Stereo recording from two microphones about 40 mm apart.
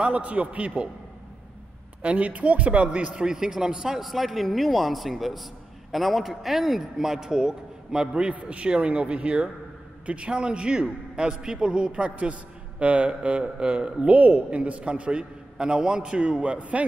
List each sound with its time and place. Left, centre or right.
0.0 s speech: right
2.0 s speech: right
3.2 s a man's voice: centre